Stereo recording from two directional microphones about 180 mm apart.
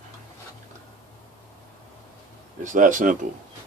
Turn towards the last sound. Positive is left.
turn(degrees=-45)  # may be behind; listen again after turning